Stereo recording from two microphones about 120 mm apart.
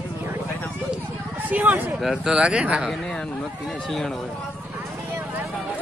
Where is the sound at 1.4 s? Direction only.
15° right (ahead or behind).